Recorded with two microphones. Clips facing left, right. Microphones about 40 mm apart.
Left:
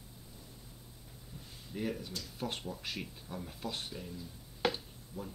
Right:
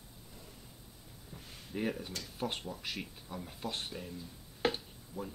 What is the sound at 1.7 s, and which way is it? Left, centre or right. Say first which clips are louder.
Speech: right 2 dB; right.